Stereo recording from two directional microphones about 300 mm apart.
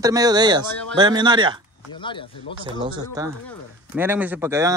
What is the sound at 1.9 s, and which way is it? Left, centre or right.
Speech, centre.